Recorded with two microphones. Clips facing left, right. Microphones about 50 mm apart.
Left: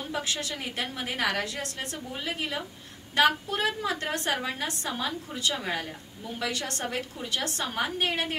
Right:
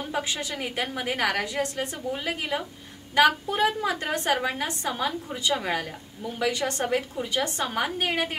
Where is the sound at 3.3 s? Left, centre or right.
Centre.